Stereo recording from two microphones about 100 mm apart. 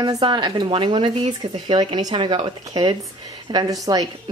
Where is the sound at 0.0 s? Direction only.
45° right (ahead or behind).